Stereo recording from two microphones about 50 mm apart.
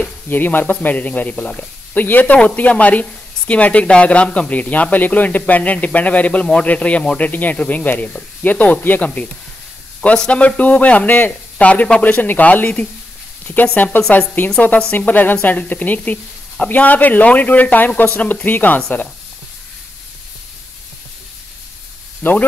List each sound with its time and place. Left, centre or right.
0.3 s speech: left
22.2 s speech: left